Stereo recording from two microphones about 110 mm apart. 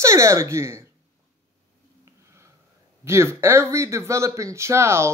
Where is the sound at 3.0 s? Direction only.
25° right (ahead or behind).